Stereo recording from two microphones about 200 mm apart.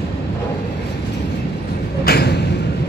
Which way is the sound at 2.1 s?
55° left (ahead or behind).